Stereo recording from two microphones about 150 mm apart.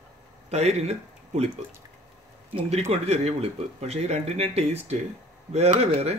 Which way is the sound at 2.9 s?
45° right (ahead or behind).